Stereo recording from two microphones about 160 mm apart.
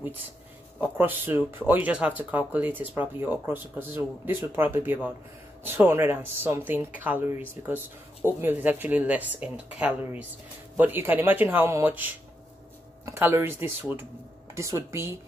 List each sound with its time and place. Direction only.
0.7 s speech: 10° right (ahead or behind)